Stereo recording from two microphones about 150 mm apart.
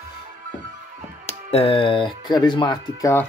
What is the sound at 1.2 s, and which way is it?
Speech, 40° left (ahead or behind).